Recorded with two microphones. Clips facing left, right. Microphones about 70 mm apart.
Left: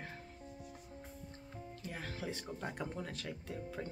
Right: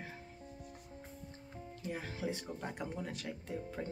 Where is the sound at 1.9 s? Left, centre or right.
Centre.